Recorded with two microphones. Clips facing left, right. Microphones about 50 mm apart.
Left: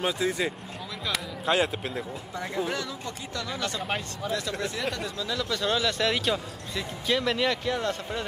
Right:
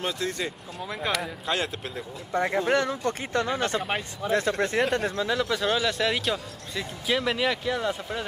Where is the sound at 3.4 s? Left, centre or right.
Right.